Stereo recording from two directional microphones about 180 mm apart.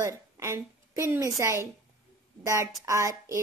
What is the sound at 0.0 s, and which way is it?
A woman's voice, 15° right (ahead or behind).